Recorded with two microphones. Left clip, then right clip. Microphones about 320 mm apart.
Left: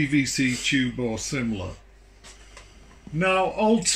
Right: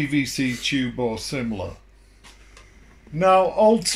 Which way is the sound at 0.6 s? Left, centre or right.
Centre.